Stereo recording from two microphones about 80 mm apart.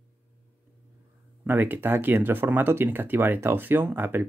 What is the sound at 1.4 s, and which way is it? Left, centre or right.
Speech, right.